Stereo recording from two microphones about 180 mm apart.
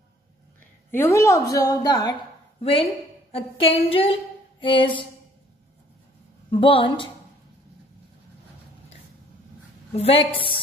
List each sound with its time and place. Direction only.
0.9 s a woman's voice: 15° left (ahead or behind)
2.1 s a woman's voice: 30° left (ahead or behind)
6.5 s a woman's voice: 30° left (ahead or behind)
9.9 s a woman's voice: 30° left (ahead or behind)